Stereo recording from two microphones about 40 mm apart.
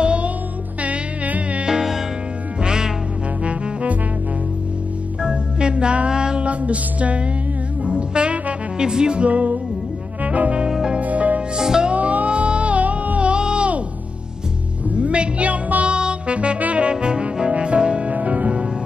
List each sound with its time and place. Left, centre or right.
0.0 s music: right
0.8 s music: right
1.7 s music: centre
5.2 s organ: right
6.4 s music: right
10.7 s music: centre
11.0 s music: right
11.5 s music: centre
11.9 s music: right
13.3 s music: right
14.9 s music: right
16.0 s music: right
16.9 s music: right
18.1 s music: right